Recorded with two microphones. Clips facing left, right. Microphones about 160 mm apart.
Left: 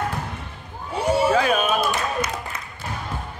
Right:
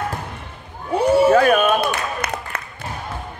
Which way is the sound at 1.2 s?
55° right (ahead or behind).